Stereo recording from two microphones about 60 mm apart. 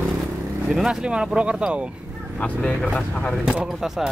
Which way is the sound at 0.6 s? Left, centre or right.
Centre.